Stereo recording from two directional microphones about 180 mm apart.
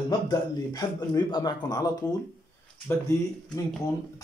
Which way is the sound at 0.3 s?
20° left (ahead or behind).